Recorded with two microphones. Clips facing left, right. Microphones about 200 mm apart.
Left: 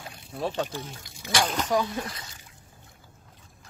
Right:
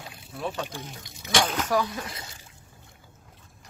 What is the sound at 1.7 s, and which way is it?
Speech, 20° left (ahead or behind).